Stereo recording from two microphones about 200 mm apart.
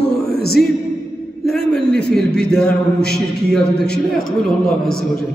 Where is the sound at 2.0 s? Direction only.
5° left (ahead or behind).